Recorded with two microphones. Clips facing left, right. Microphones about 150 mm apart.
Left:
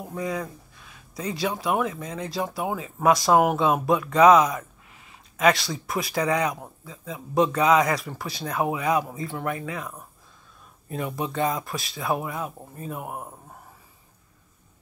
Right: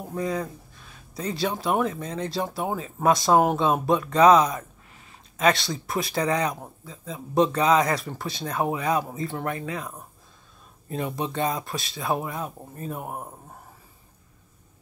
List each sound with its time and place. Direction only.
0.1 s speech: 35° right (ahead or behind)
13.0 s speech: 5° left (ahead or behind)